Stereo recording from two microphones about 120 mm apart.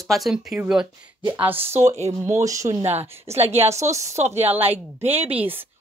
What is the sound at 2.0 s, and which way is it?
Speech, 70° right (ahead or behind).